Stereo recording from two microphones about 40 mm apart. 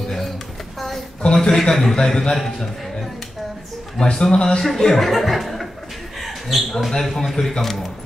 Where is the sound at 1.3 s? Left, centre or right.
Centre.